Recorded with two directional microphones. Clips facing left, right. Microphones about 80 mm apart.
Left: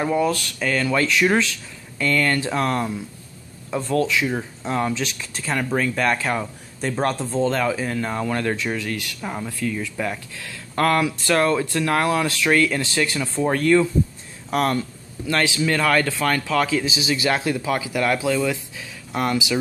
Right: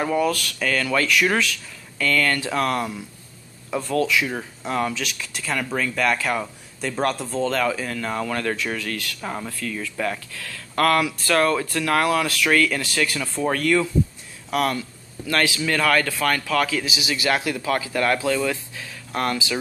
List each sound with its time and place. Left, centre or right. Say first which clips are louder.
0.0 s speech: left 1 dB; centre
9.2 s speech: right 1 dB; centre
9.5 s speech: left 4 dB; centre
14.5 s a sound: left 2 dB; left
15.3 s speech: left 1 dB; left